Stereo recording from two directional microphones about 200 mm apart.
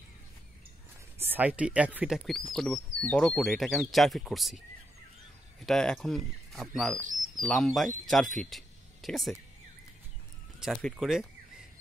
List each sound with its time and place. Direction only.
1.3 s speech: 5° right (ahead or behind)
5.7 s speech: centre (ahead or behind)
10.6 s speech: centre (ahead or behind)